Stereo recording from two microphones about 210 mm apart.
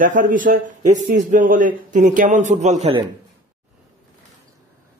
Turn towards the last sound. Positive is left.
turn(degrees=-30)  # may be behind; listen again after turning